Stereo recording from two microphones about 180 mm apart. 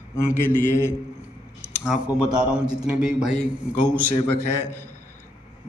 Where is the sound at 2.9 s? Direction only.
5° right (ahead or behind).